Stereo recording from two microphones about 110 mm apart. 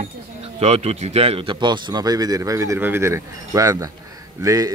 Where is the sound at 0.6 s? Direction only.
75° right (ahead or behind).